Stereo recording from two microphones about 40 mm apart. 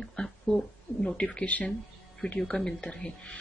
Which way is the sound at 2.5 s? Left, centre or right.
Left.